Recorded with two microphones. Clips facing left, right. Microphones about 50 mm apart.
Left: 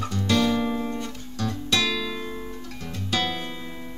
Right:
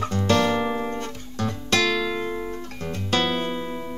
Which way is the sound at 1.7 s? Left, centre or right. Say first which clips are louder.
Right 4 dB; right.